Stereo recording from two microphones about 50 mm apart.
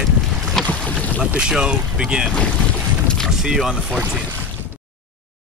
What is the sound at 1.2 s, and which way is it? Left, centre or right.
Speech, centre.